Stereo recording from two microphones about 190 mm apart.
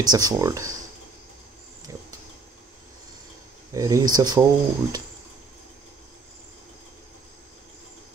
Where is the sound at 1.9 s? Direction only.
20° right (ahead or behind).